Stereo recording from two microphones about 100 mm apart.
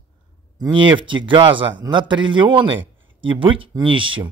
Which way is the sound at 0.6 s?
50° right (ahead or behind).